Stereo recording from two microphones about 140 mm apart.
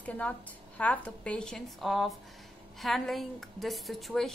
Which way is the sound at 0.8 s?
10° left (ahead or behind).